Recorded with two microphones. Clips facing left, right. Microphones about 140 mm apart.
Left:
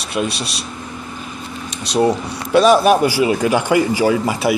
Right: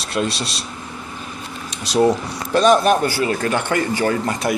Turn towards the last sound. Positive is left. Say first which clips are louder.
# left 4 dB
turn(degrees=5)  # may be behind; listen again after turning